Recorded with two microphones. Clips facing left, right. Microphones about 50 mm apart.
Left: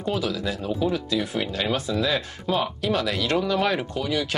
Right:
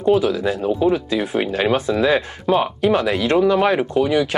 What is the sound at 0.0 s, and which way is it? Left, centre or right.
Speech, right.